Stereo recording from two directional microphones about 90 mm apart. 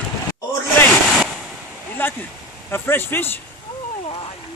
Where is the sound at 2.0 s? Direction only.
25° left (ahead or behind).